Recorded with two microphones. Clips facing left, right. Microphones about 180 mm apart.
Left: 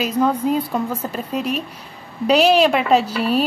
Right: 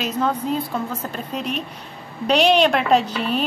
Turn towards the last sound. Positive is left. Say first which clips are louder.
# left 1 dB
turn(degrees=5)  # may be behind; listen again after turning